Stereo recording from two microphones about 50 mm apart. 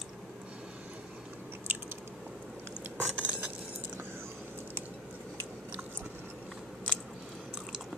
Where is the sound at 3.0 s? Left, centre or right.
Right.